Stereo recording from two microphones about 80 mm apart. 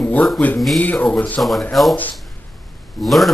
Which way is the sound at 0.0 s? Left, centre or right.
Left.